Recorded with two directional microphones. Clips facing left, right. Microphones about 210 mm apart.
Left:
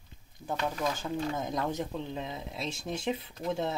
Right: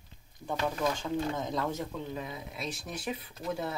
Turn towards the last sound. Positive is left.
turn(degrees=25)  # may be behind; listen again after turning